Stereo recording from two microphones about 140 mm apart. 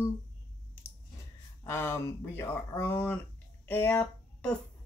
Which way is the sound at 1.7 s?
20° left (ahead or behind).